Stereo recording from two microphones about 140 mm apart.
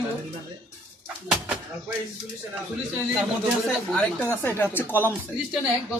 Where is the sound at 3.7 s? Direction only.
5° left (ahead or behind).